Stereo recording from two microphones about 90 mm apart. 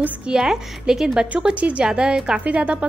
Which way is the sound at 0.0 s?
15° right (ahead or behind).